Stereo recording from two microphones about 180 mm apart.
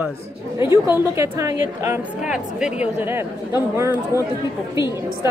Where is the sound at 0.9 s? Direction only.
15° right (ahead or behind).